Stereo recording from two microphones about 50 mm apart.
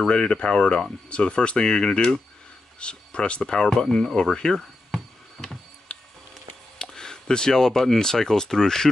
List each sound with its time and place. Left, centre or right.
0.1 s speech: left
5.9 s a sound: left
6.8 s speech: centre